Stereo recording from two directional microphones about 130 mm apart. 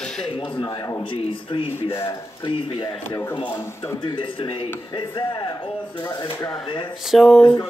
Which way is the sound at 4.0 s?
40° left (ahead or behind).